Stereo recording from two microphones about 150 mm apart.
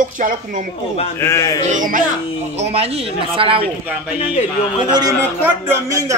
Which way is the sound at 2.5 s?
45° right (ahead or behind).